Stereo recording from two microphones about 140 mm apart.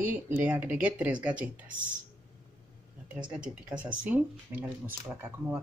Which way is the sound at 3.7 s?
10° right (ahead or behind).